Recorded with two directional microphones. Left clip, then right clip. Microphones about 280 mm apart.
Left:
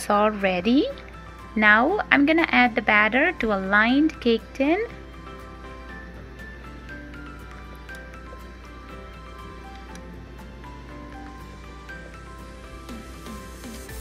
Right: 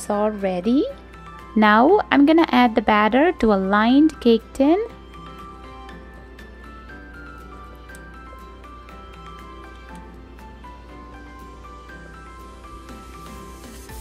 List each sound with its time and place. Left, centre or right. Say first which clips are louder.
0.0 s a woman's voice: left 1 dB; centre